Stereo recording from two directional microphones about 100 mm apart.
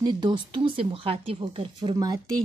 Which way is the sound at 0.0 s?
50° right (ahead or behind).